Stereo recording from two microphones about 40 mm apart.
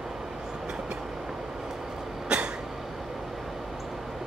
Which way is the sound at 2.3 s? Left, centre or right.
Right.